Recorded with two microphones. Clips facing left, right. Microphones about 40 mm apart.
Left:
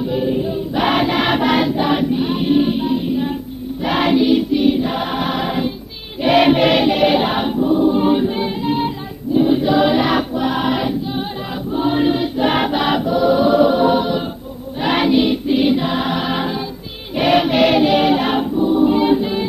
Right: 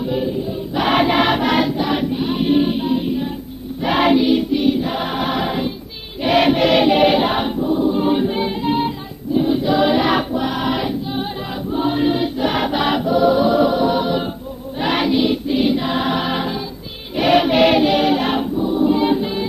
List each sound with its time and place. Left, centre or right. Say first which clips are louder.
0.0 s choir: left 2 dB; centre
1.3 s music: left 1 dB; centre
1.9 s choir: left 2 dB; centre
6.2 s music: left 2 dB; centre
6.8 s choir: right 1 dB; centre
7.6 s choir: left 4 dB; centre
8.1 s choir: left 1 dB; centre
12.4 s choir: left 3 dB; left
12.6 s music: left 1 dB; centre
14.8 s choir: left 2 dB; centre
19.0 s music: left 2 dB; centre